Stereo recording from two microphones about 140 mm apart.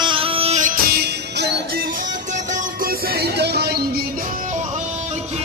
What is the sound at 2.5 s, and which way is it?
Music, 90° right.